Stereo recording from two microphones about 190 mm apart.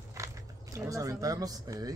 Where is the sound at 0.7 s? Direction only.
15° right (ahead or behind).